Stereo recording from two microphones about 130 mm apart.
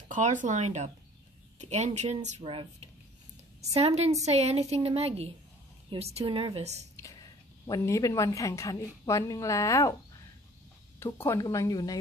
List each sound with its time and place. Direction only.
0.1 s speech: 80° right
2.4 s speech: 40° right (ahead or behind)
3.6 s a woman's voice: 55° right (ahead or behind)
7.6 s a woman's voice: 25° left (ahead or behind)
11.0 s a woman's voice: 20° left (ahead or behind)